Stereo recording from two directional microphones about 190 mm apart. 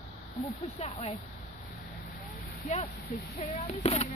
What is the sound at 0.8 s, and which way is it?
Speech, 35° left (ahead or behind).